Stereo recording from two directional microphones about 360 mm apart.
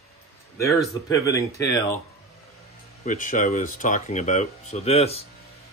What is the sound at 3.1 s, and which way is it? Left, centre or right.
Speech, left.